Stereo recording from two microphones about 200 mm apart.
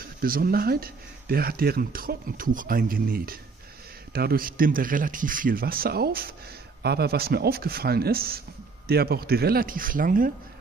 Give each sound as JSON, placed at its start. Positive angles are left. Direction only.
{"t": 0.2, "sound": "speech", "side_deg": -45}